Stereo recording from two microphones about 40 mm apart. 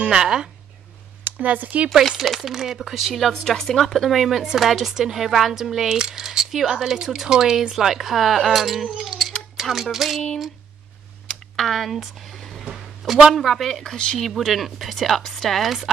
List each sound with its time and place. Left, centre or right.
0.0 s speech: right
1.2 s speech: right
2.0 s speech: centre
3.3 s speech: centre
11.5 s speech: centre
12.3 s music: centre
13.3 s speech: centre